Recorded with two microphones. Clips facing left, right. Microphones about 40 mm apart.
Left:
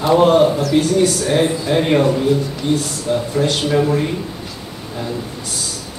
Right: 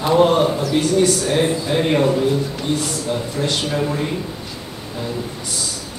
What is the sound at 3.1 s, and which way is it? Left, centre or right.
Speech, centre.